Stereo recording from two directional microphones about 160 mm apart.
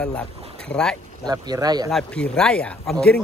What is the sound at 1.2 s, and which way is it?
Speech, 25° right (ahead or behind).